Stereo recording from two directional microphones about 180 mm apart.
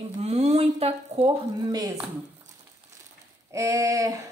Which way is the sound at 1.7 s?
20° right (ahead or behind).